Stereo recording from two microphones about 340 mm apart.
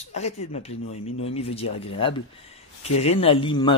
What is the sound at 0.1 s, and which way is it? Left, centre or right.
A man's voice, centre.